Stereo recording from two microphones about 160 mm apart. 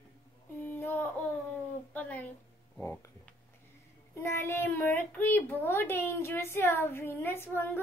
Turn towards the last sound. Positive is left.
turn(degrees=15)  # may be behind; listen again after turning